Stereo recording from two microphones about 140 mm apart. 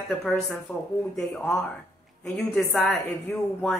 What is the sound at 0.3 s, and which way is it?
Speech, centre (ahead or behind).